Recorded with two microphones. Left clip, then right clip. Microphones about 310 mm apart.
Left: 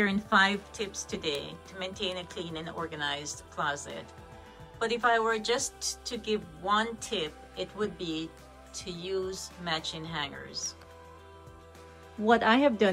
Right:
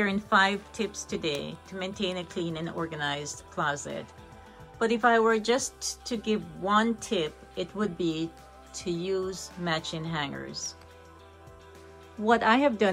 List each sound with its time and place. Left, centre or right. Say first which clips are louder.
0.0 s a woman's voice: right 1 dB; centre
5.6 s speech: even; left
6.0 s a woman's voice: right 3 dB; centre
12.3 s a woman's voice: right 1 dB; centre